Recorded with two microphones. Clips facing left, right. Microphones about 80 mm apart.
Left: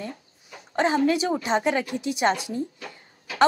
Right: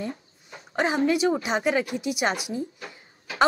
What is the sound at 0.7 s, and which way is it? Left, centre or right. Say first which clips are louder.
A woman's voice: left 1 dB; centre.